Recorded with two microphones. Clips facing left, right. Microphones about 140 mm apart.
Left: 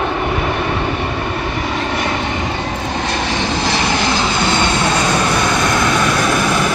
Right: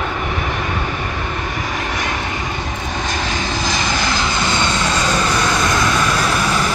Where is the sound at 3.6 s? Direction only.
65° left (ahead or behind).